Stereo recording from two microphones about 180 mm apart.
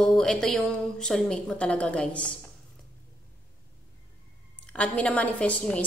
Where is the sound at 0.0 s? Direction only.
5° left (ahead or behind).